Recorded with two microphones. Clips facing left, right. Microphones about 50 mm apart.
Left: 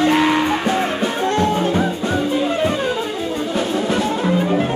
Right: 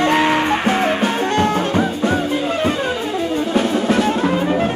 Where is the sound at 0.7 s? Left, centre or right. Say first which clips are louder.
Right 2 dB; right.